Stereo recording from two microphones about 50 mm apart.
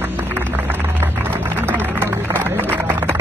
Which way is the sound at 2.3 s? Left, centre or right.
Right.